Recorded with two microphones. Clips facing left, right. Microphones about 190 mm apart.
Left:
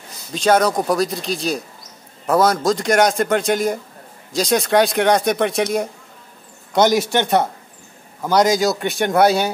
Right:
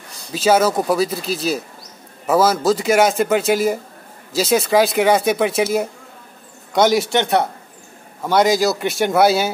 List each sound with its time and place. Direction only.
0.3 s a man's voice: 5° right (ahead or behind)